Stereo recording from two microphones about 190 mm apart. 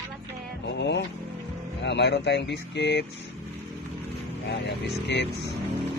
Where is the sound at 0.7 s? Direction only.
65° left (ahead or behind).